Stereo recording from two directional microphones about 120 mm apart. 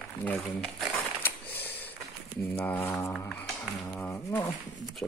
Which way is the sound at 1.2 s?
15° left (ahead or behind).